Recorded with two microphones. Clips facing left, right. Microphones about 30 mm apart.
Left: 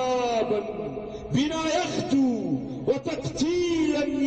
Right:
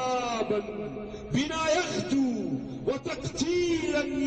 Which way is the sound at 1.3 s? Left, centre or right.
Left.